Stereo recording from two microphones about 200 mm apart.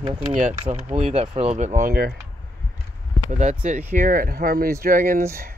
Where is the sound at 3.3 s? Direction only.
35° right (ahead or behind).